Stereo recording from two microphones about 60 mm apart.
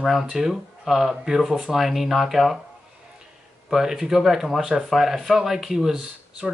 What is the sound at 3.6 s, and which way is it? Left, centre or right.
Speech, centre.